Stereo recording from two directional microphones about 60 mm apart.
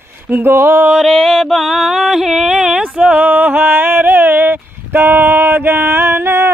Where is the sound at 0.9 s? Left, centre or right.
Centre; by 6.5 s right.